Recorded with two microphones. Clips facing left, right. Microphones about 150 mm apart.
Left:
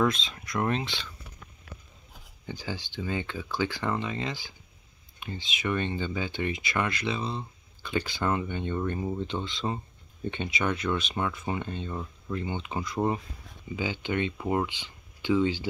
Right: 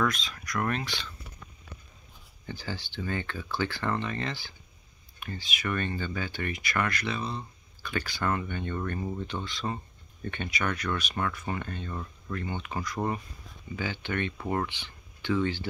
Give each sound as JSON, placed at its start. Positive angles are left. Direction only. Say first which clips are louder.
{"t": 0.0, "sound": "speech", "louder": "left 3 dB", "side_deg": 25}
{"t": 2.4, "sound": "speech", "louder": "left 1 dB", "side_deg": 15}